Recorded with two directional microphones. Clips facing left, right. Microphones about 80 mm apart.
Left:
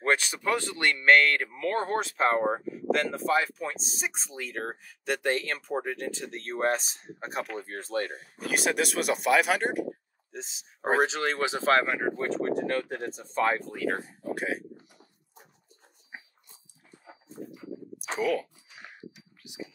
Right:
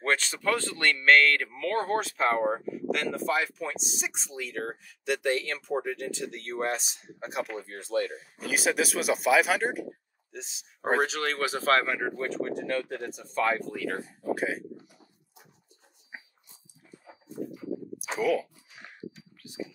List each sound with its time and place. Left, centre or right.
0.0 s speech: centre; by 8.2 s left
8.2 s speech: centre
10.3 s speech: left
14.3 s speech: centre
18.1 s a sound: centre